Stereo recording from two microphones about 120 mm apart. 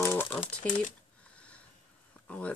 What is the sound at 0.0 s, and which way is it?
Crumpling, 25° left (ahead or behind).